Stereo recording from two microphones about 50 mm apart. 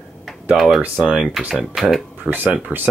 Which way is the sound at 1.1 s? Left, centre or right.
Centre.